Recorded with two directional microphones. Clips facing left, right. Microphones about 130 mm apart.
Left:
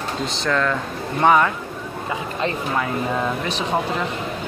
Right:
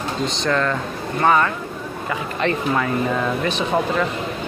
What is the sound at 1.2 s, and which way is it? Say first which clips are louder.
Speech: left 1 dB; 10° left (ahead or behind).